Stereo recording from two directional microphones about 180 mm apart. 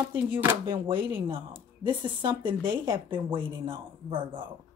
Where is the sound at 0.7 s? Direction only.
25° right (ahead or behind).